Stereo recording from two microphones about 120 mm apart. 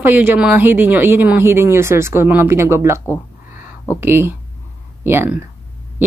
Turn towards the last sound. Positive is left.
turn(degrees=-20)  # may be behind; listen again after turning